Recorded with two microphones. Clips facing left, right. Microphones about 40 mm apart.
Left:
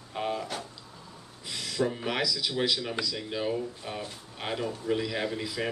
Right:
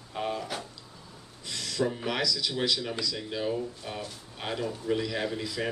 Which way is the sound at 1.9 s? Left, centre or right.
Centre.